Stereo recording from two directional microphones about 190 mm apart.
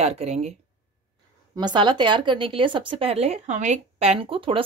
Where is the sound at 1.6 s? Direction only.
25° right (ahead or behind).